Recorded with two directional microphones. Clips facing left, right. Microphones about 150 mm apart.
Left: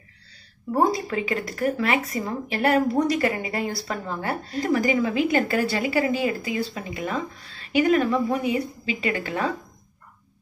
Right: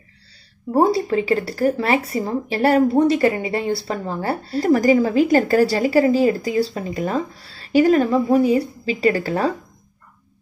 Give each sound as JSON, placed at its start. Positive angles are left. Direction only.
{"t": 0.7, "sound": "speech", "side_deg": -30}